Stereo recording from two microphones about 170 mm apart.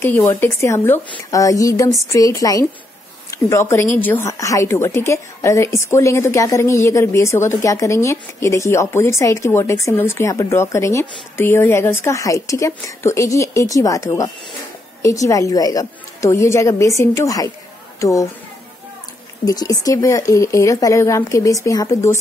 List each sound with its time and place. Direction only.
0.0 s a woman's voice: 15° left (ahead or behind)
19.4 s a woman's voice: 20° left (ahead or behind)